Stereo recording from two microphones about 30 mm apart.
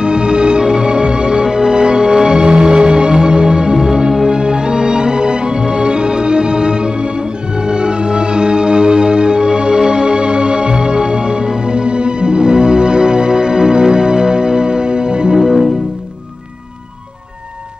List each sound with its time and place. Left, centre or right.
0.0 s music: right
15.3 s music: centre